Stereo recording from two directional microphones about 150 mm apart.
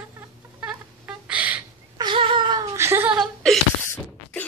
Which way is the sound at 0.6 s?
10° right (ahead or behind).